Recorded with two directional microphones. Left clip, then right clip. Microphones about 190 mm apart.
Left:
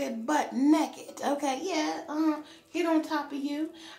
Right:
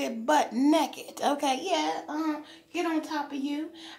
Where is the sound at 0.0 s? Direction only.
45° right (ahead or behind).